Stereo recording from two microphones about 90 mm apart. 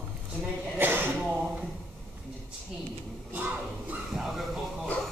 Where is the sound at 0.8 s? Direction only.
25° right (ahead or behind).